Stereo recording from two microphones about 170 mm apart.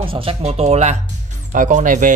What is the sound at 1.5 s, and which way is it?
Speech, 50° right (ahead or behind).